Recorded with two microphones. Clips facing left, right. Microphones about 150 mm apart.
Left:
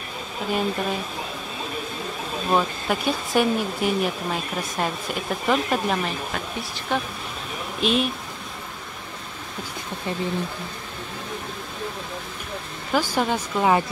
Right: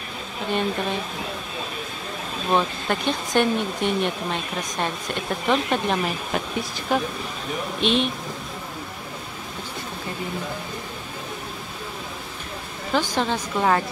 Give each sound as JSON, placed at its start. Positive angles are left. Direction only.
{"t": 0.5, "sound": "speech", "side_deg": 5}
{"t": 2.5, "sound": "speech", "side_deg": 5}
{"t": 12.9, "sound": "speech", "side_deg": 10}